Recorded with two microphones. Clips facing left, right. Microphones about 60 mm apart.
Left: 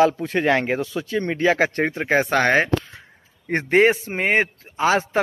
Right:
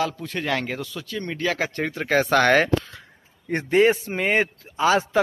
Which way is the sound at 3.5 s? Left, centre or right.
Left.